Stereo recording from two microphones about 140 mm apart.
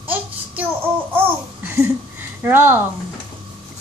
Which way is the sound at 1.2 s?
15° right (ahead or behind).